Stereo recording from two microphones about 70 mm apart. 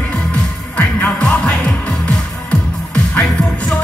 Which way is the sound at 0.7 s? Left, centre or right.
Centre.